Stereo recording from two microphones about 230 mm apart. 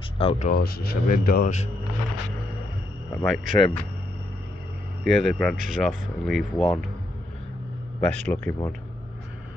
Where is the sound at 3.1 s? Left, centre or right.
Centre.